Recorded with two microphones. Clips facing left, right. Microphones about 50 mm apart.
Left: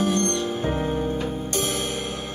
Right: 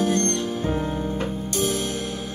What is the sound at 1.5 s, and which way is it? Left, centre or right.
Music, left.